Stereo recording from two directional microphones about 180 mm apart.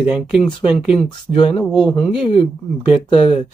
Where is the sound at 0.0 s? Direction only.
Centre (ahead or behind).